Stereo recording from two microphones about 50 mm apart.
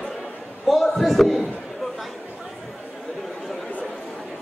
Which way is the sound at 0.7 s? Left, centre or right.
Centre.